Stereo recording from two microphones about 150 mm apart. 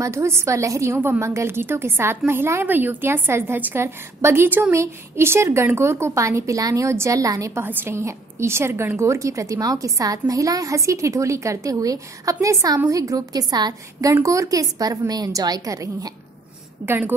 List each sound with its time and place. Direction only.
0.0 s a woman's voice: 20° right (ahead or behind)